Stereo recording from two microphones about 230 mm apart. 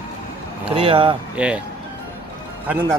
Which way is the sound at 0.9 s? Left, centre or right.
Right.